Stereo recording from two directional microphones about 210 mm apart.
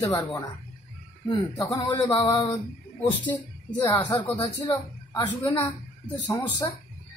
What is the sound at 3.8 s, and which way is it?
A woman's voice, 20° left (ahead or behind).